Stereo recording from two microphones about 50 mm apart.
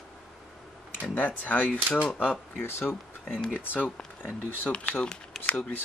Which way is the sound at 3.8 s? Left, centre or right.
Left.